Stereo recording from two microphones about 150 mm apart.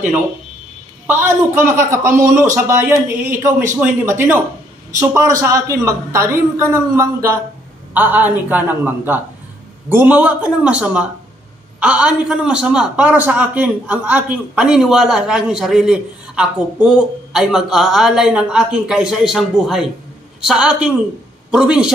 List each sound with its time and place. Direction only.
1.0 s a woman's voice: 15° right (ahead or behind)